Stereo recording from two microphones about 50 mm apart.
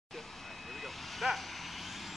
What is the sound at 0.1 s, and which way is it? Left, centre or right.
Vehicle, centre.